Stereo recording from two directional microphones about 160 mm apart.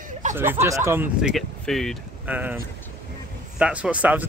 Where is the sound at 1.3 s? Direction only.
Centre (ahead or behind).